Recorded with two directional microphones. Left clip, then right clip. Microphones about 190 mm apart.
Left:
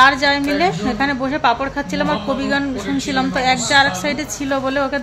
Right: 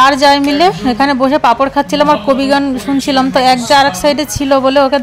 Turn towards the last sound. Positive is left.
turn(degrees=-30)  # may be behind; listen again after turning